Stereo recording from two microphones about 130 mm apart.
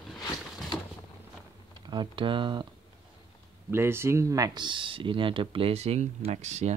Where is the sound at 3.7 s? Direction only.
20° right (ahead or behind); by 6.7 s 60° right (ahead or behind).